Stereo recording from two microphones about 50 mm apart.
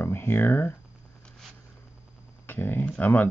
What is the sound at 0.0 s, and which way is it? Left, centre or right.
Speech, left.